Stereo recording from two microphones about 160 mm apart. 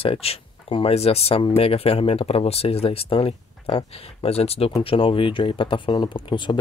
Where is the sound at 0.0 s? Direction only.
35° left (ahead or behind).